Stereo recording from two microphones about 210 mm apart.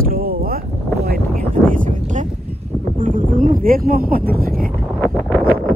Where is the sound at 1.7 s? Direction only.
35° right (ahead or behind).